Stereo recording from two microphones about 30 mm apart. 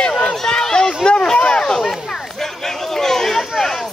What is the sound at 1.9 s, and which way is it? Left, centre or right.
Chatter, centre.